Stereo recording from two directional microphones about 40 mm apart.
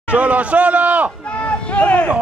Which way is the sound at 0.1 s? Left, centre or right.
Right.